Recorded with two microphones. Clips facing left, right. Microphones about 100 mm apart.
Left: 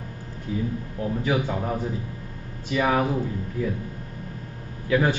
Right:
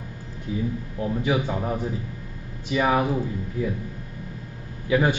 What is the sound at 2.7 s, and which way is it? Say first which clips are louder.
Speech: right 1 dB; 15° right (ahead or behind).